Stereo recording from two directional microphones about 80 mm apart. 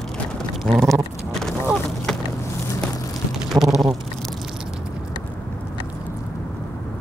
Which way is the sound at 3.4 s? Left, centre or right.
Centre.